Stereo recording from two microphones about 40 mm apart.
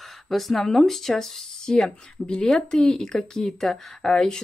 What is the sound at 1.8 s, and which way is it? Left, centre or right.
Speech, left.